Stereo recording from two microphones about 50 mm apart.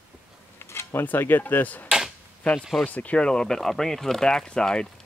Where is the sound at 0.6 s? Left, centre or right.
Left.